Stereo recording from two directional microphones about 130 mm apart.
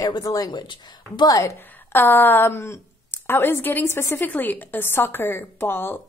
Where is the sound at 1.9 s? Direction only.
15° left (ahead or behind).